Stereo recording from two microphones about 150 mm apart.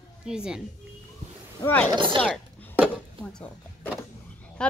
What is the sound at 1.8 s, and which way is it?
Speech, 35° right (ahead or behind).